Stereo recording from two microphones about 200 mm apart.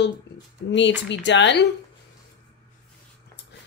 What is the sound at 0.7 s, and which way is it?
A woman's voice, 65° left (ahead or behind).